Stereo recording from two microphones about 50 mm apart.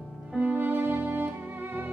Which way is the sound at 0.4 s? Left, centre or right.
Right.